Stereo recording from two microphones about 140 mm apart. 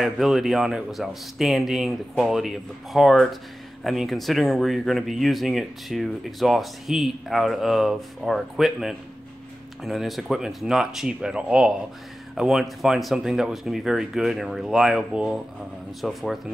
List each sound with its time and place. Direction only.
0.0 s speech: centre (ahead or behind)